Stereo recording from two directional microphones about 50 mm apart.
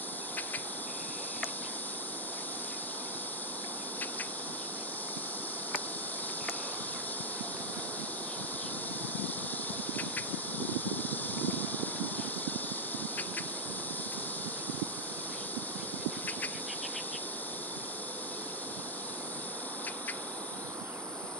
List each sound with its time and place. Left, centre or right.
10.8 s vehicle: left